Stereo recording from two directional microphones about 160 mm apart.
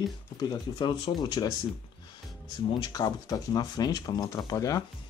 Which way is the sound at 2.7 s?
30° left (ahead or behind).